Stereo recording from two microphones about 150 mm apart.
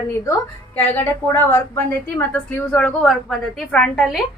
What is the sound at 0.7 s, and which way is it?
A woman's voice, 15° left (ahead or behind).